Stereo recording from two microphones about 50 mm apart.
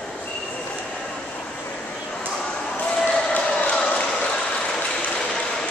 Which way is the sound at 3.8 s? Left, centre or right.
Centre.